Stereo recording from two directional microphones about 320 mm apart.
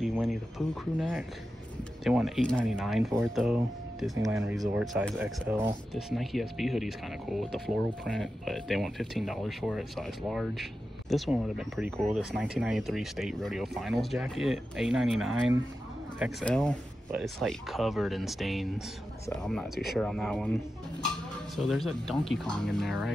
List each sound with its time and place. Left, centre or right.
0.0 s speech: centre